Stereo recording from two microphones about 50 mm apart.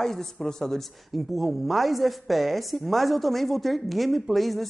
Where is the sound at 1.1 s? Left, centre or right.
Centre.